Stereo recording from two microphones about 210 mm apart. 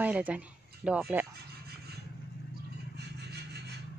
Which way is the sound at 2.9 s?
50° right (ahead or behind).